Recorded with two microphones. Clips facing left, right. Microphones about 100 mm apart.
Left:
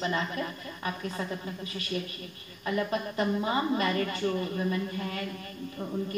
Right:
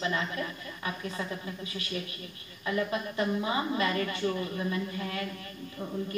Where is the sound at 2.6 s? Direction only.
40° left (ahead or behind).